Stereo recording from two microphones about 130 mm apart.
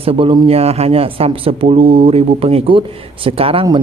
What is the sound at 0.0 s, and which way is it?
A man's voice, 45° right (ahead or behind).